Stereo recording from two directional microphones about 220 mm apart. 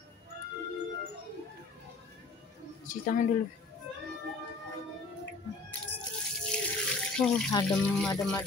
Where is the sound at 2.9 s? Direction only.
35° left (ahead or behind).